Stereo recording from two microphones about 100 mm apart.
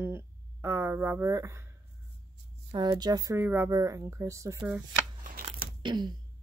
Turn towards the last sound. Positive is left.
turn(degrees=-50)  # may be behind; listen again after turning